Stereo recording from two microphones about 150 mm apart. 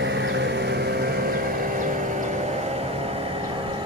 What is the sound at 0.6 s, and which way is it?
Vehicle, 90° right.